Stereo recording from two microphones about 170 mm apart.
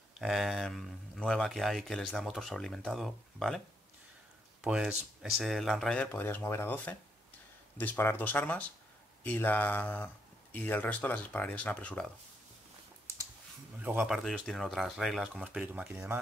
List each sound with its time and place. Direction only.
0.2 s speech: centre (ahead or behind)
4.6 s speech: 5° right (ahead or behind)
13.7 s speech: 10° right (ahead or behind)